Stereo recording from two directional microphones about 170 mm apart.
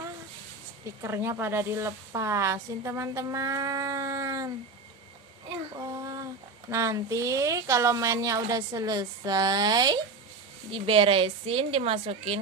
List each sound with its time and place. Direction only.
1.0 s speech: 15° right (ahead or behind)
5.8 s a sound: 20° right (ahead or behind)
6.7 s a woman's voice: 20° right (ahead or behind); by 12.4 s 35° right (ahead or behind)